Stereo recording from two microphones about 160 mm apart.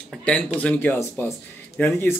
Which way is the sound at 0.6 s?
10° left (ahead or behind).